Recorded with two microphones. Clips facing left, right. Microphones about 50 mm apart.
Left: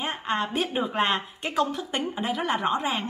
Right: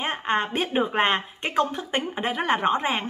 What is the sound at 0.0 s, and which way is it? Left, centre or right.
Speech, right.